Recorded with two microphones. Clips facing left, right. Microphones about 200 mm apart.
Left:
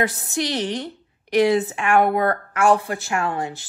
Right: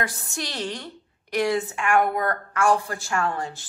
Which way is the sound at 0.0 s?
20° left (ahead or behind).